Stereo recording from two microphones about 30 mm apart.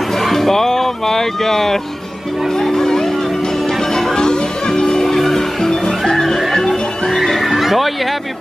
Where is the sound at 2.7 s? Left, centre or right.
Centre.